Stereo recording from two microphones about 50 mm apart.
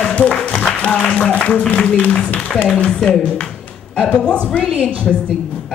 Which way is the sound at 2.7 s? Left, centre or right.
Centre.